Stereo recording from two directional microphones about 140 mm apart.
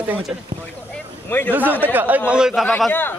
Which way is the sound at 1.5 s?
15° right (ahead or behind).